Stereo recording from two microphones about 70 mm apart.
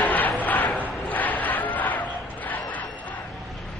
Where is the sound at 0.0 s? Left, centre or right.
Left.